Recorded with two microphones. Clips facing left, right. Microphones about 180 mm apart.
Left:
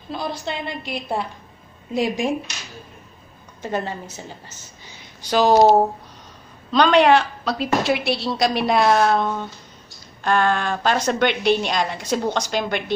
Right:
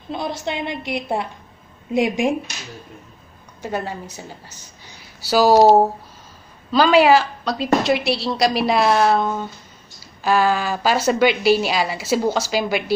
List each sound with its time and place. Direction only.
0.1 s a woman's voice: 20° right (ahead or behind)
3.6 s a woman's voice: 10° right (ahead or behind)
6.7 s speech: 5° right (ahead or behind)